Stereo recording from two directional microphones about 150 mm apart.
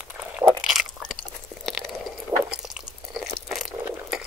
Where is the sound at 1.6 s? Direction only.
Centre (ahead or behind).